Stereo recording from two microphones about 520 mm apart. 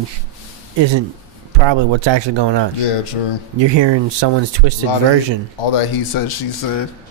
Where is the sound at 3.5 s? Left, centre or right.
Right.